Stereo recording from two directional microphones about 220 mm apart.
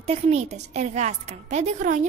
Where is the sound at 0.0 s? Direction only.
30° right (ahead or behind).